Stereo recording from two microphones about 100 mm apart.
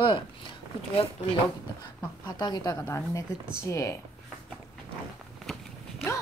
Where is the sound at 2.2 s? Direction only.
45° left (ahead or behind).